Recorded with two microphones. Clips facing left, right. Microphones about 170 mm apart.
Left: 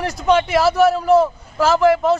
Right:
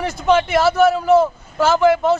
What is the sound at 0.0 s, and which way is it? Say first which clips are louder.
A man's voice: even; centre (ahead or behind).